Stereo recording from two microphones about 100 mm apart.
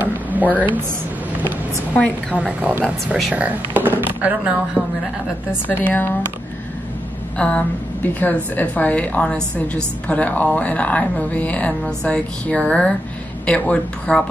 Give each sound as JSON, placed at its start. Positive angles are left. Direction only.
{"t": 0.0, "sound": "a sound", "side_deg": -15}
{"t": 2.3, "sound": "speech", "side_deg": -15}
{"t": 3.4, "sound": "speech", "side_deg": -15}
{"t": 5.7, "sound": "speech", "side_deg": 20}
{"t": 7.3, "sound": "a woman's voice", "side_deg": 10}